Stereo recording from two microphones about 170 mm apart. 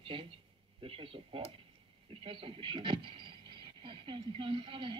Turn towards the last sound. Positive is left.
turn(degrees=-30)  # may be behind; listen again after turning